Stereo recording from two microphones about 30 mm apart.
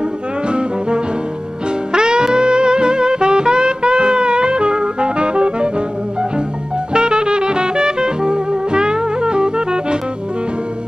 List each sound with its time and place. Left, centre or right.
0.5 s music: right
6.9 s music: right